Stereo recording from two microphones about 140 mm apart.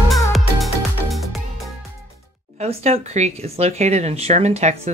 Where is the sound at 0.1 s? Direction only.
Centre (ahead or behind).